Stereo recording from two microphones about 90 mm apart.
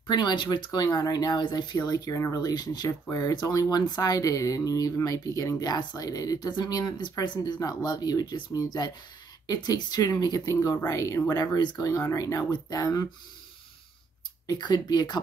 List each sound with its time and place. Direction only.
0.0 s speech: 55° left (ahead or behind)
14.5 s speech: 50° left (ahead or behind)